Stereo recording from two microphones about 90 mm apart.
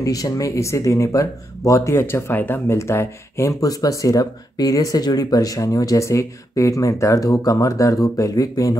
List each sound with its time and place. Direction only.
0.0 s speech: 40° left (ahead or behind)